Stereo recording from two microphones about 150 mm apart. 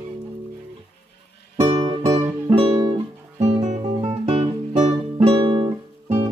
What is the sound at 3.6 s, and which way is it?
Music, 45° right (ahead or behind).